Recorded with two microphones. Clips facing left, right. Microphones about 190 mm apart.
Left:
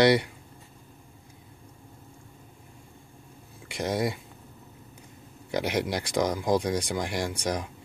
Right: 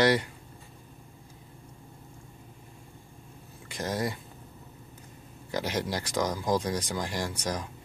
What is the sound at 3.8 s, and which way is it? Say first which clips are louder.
Speech: left 3 dB; 15° left (ahead or behind).